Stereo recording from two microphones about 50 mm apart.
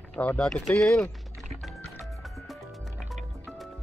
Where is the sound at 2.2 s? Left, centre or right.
Centre.